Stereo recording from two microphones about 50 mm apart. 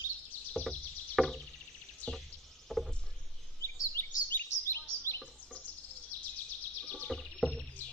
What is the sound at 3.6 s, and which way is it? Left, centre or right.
Chirp, left.